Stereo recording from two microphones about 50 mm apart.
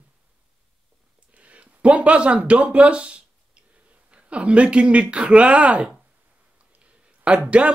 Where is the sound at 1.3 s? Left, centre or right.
Right.